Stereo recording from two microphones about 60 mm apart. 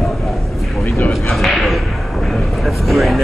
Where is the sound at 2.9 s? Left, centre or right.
Centre.